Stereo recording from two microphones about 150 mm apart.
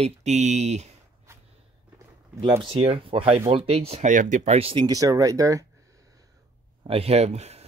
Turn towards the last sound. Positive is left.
turn(degrees=-45)  # may be behind; listen again after turning